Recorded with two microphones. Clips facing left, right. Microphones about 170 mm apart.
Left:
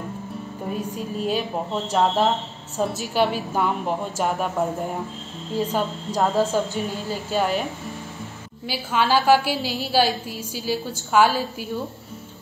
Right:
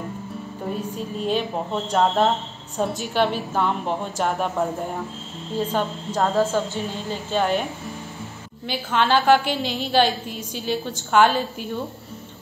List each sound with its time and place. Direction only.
0.7 s a woman's voice: 5° left (ahead or behind)
5.7 s a woman's voice: 5° left (ahead or behind)
6.3 s a woman's voice: 15° left (ahead or behind)
6.8 s a woman's voice: centre (ahead or behind)